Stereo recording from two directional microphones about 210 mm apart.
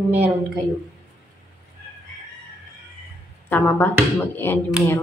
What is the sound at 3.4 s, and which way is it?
A woman's voice, 10° left (ahead or behind).